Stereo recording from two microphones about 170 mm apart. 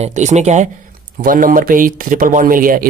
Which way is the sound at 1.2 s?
55° right (ahead or behind).